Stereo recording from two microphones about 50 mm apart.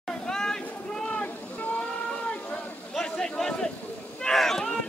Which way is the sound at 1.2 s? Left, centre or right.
Left.